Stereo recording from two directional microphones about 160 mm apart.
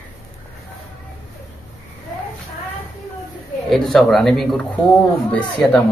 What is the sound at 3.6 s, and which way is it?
A man's voice, centre (ahead or behind).